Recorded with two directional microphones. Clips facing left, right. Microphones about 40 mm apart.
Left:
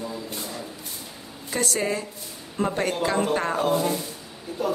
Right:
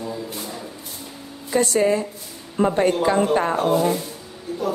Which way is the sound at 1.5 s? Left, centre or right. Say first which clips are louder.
Right 7 dB; right.